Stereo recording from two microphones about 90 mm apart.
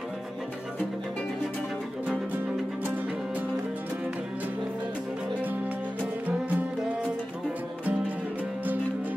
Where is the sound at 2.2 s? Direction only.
20° right (ahead or behind).